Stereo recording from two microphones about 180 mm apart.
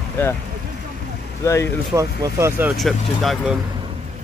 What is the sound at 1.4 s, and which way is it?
Speech, 15° left (ahead or behind).